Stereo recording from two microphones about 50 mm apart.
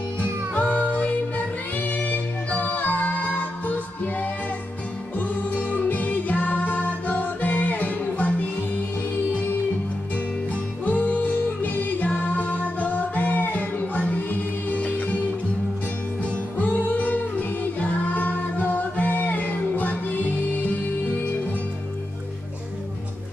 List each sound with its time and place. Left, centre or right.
0.2 s music: left
10.5 s music: left
16.5 s music: left